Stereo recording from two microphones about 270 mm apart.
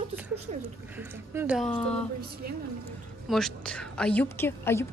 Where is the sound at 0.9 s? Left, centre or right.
Centre.